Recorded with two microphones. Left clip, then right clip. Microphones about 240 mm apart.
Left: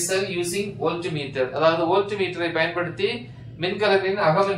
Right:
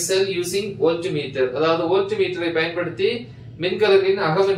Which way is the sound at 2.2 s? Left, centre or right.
Centre.